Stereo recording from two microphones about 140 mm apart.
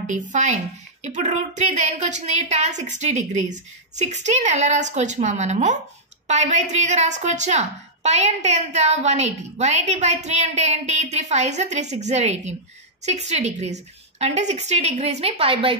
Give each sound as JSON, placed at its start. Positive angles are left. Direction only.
{"t": 0.0, "sound": "a woman's voice", "side_deg": -60}